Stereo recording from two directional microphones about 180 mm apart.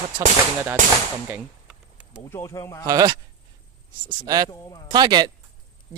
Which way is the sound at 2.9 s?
20° right (ahead or behind).